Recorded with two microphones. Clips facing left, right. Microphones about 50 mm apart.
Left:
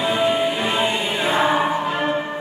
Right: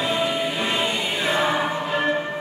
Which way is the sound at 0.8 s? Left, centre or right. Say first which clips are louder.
Left 3 dB; left.